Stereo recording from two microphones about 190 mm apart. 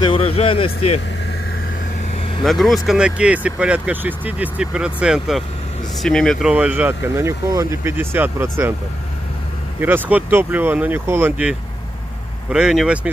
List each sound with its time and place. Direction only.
0.0 s speech: 30° left (ahead or behind)
2.4 s speech: centre (ahead or behind)
9.8 s speech: 10° right (ahead or behind)